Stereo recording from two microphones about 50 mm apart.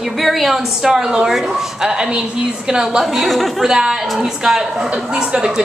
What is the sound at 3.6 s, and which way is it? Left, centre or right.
A woman's voice, centre.